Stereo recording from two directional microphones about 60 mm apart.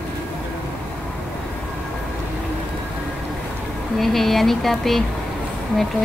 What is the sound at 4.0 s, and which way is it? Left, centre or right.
A woman's voice, centre.